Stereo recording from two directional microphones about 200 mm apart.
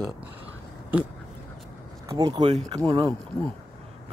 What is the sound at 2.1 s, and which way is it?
Speech, 20° right (ahead or behind).